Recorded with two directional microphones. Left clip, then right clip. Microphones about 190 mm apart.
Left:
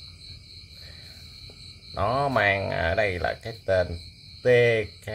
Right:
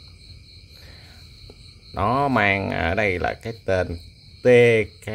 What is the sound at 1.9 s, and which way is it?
Speech, 40° right (ahead or behind).